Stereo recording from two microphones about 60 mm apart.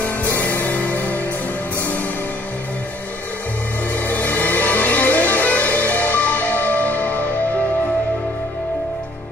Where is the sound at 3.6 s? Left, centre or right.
Left.